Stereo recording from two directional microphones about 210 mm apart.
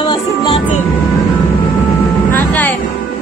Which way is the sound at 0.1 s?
25° left (ahead or behind).